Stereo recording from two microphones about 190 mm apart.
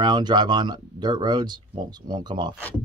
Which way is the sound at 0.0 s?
20° right (ahead or behind).